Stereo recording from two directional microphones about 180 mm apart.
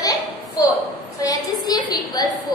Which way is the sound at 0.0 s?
20° left (ahead or behind).